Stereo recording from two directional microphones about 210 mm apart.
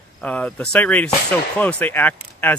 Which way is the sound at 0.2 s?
5° left (ahead or behind).